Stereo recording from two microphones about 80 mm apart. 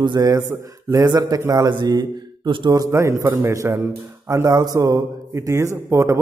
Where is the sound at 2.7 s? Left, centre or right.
Right.